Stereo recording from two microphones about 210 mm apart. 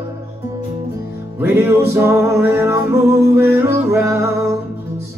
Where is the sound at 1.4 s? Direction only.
10° right (ahead or behind).